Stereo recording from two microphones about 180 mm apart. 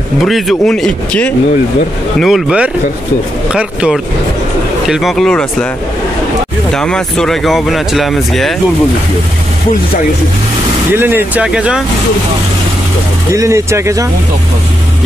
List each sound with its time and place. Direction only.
0.2 s speech: centre (ahead or behind)
6.7 s speech: 5° left (ahead or behind)
10.9 s speech: 10° right (ahead or behind)
13.3 s speech: 15° right (ahead or behind)